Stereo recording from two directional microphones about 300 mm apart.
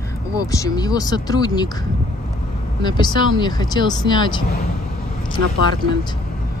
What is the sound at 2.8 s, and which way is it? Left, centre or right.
Speech, centre.